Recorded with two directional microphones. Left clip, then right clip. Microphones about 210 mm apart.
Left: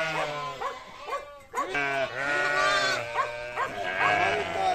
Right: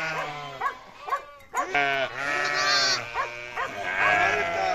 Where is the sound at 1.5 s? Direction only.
35° right (ahead or behind).